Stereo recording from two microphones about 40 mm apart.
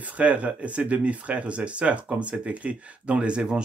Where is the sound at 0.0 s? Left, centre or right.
Right.